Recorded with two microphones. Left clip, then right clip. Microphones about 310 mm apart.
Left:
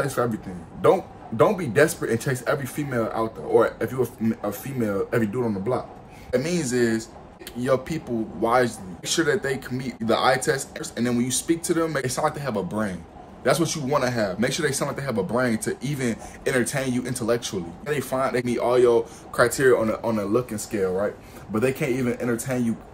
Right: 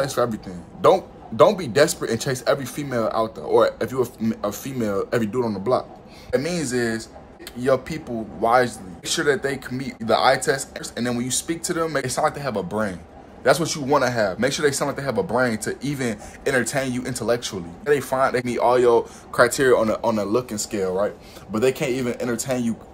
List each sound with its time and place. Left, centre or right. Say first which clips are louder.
0.2 s a man's voice: right 2 dB; centre
6.3 s speech: right 1 dB; centre